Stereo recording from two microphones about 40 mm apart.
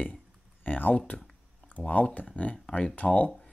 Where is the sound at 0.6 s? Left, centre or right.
Left.